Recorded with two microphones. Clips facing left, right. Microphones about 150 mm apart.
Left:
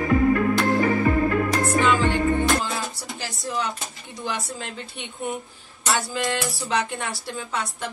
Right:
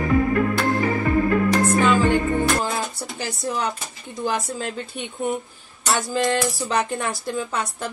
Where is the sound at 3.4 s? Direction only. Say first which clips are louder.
Right 2 dB; 45° right (ahead or behind).